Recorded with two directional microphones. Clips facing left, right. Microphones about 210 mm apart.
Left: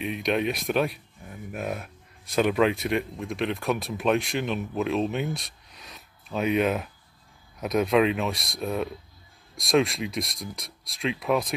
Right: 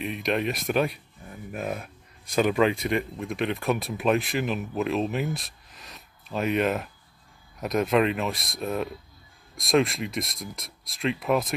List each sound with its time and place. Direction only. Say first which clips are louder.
0.0 s speech: left 1 dB; centre (ahead or behind)